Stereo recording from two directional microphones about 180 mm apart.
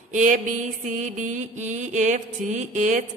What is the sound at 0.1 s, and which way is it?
Mantra, 45° right (ahead or behind).